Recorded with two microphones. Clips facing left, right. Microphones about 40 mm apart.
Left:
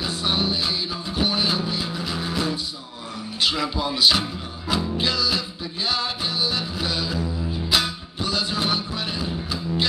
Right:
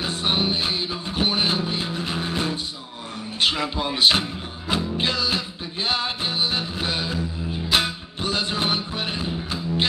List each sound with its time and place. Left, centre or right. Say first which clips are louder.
0.0 s music: right 1 dB; right